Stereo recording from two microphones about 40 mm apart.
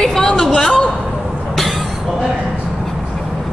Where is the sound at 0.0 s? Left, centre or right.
Centre.